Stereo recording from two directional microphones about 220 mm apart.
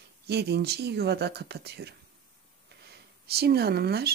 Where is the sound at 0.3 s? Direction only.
50° right (ahead or behind).